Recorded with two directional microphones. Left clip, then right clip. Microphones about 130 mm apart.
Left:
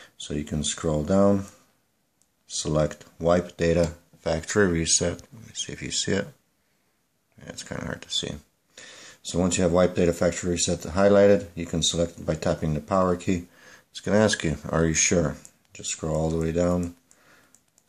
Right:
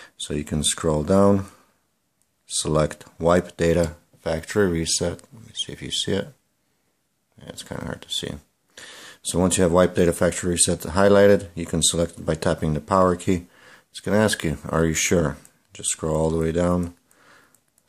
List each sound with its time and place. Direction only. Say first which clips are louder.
0.0 s speech: right 3 dB; 35° right (ahead or behind)
3.8 s speech: right 1 dB; 15° right (ahead or behind)
7.3 s speech: right 1 dB; 25° right (ahead or behind)
13.5 s speech: right 1 dB; 25° right (ahead or behind)